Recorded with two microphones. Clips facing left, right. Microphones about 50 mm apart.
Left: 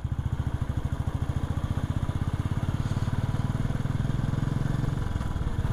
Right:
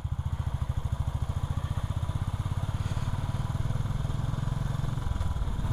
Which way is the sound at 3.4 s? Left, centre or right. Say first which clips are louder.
Left 4 dB; left.